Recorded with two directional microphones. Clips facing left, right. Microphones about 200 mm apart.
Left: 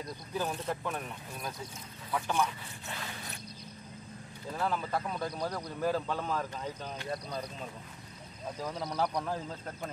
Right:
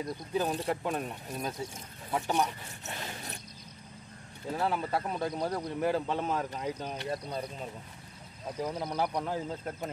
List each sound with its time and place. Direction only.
0.0 s speech: 20° right (ahead or behind)
1.4 s speech: 25° right (ahead or behind)
2.9 s mechanisms: 25° right (ahead or behind)
4.5 s speech: 25° right (ahead or behind)
8.6 s speech: 10° right (ahead or behind)